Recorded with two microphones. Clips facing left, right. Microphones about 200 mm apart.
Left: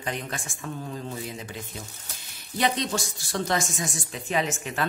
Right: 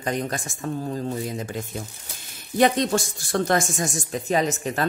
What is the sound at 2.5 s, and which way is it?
Speech, 50° right (ahead or behind).